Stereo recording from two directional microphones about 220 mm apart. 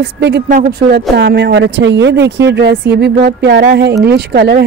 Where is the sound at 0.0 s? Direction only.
50° right (ahead or behind).